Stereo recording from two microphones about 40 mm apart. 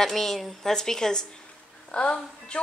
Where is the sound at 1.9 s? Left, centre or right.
Left.